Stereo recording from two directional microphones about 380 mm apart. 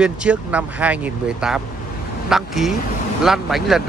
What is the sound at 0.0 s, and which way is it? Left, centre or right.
Speech, centre.